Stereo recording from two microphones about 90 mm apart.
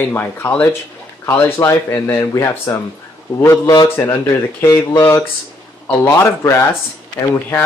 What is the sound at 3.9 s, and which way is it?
Speech, 25° left (ahead or behind).